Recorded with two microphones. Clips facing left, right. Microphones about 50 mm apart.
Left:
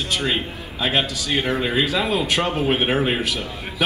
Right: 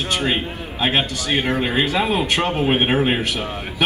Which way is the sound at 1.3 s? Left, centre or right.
Right.